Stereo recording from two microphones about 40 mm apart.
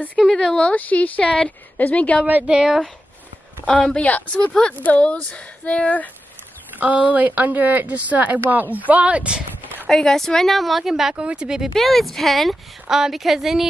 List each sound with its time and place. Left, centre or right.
0.3 s speech: left
0.7 s speech: left
2.4 s speech: right
4.0 s speech: left
6.8 s speech: right
9.8 s a woman's voice: centre
11.1 s speech: right
11.7 s a woman's voice: centre